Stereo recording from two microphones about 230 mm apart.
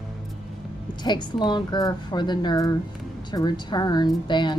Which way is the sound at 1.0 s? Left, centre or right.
Centre.